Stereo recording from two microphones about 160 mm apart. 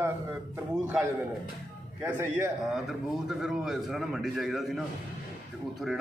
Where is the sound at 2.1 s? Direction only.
10° right (ahead or behind).